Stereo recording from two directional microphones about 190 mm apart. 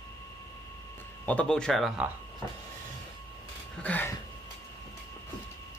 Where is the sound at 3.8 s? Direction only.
10° left (ahead or behind).